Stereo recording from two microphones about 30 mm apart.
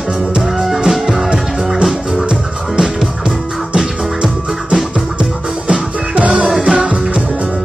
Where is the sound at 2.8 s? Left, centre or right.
Centre.